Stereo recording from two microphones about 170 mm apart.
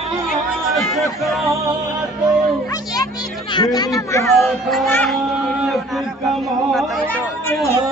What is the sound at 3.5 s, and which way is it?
Speech, 25° left (ahead or behind).